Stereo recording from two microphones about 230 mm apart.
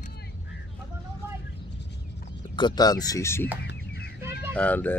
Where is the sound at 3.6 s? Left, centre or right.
Left.